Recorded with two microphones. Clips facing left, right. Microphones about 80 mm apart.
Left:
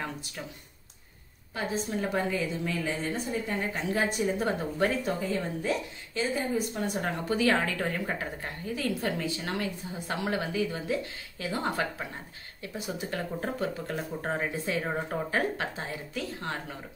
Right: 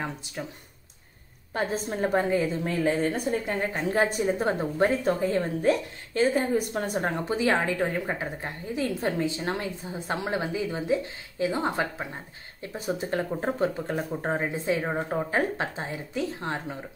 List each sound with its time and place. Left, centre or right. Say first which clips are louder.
1.5 s a woman's voice: right 3 dB; right
7.0 s a woman's voice: right 1 dB; right
12.7 s a woman's voice: right 6 dB; right